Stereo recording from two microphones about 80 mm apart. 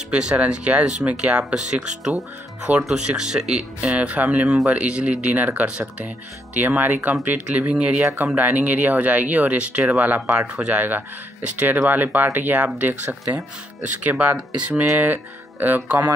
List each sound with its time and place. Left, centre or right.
0.1 s speech: centre
10.3 s speech: centre